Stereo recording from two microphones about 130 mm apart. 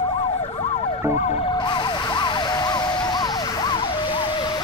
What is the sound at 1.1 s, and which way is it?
Emergency vehicle, 65° left (ahead or behind).